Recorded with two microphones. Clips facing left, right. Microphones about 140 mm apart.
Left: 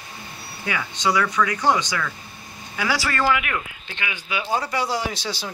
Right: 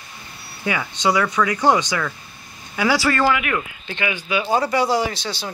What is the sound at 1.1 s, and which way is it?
Speech, 30° right (ahead or behind).